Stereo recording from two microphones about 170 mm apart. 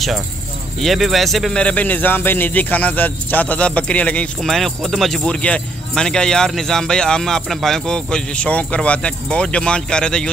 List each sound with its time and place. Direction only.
0.7 s speech: centre (ahead or behind)